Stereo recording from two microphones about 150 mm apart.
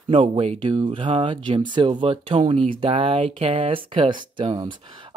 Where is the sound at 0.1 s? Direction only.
35° right (ahead or behind).